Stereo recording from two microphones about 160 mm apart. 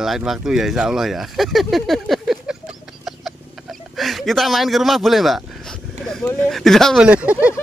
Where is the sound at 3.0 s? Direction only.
Centre (ahead or behind).